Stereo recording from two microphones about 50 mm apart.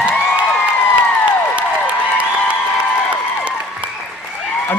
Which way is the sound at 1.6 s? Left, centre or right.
Right.